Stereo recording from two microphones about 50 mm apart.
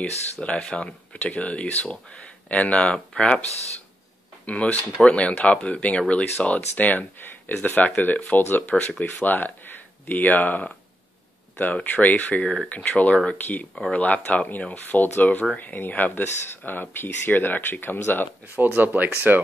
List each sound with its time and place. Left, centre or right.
0.4 s speech: left
4.5 s speech: left
6.8 s speech: left
8.6 s speech: left
9.0 s speech: left
11.7 s speech: left
18.6 s speech: right